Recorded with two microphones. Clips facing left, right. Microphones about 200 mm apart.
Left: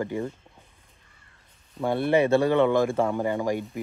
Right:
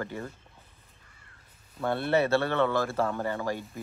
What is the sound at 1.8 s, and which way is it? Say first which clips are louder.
Speech: left 4 dB; 15° left (ahead or behind).